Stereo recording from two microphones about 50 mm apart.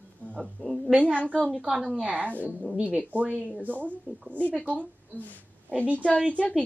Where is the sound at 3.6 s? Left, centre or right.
Right.